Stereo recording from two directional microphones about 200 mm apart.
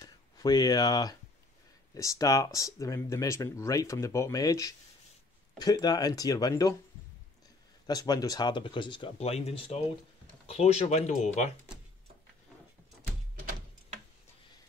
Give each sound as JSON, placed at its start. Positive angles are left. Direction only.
{"t": 0.0, "sound": "a sound", "side_deg": 20}
{"t": 2.0, "sound": "speech", "side_deg": 15}
{"t": 7.8, "sound": "speech", "side_deg": 20}